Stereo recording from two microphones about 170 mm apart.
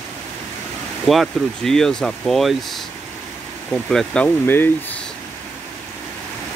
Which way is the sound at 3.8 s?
5° left (ahead or behind).